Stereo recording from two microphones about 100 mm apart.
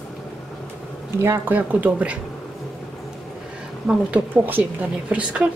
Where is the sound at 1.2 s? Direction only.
25° right (ahead or behind).